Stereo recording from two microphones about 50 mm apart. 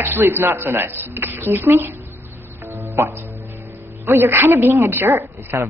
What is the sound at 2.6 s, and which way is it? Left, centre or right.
Music, right.